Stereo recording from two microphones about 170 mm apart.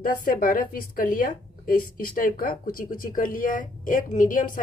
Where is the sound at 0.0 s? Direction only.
55° left (ahead or behind).